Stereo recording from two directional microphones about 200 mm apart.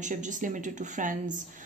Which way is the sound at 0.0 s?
40° right (ahead or behind).